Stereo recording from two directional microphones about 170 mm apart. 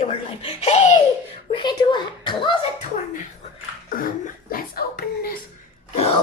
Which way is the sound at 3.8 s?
55° left (ahead or behind).